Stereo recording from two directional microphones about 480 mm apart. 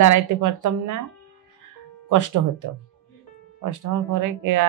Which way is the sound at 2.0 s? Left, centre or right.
Right.